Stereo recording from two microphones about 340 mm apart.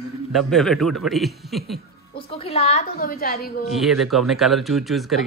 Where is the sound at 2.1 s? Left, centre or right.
Centre.